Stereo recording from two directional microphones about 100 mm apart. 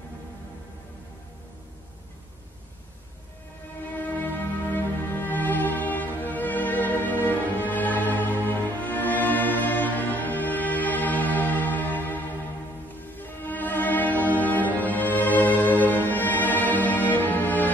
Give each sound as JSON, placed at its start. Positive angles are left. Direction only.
{"t": 3.9, "sound": "music", "side_deg": 15}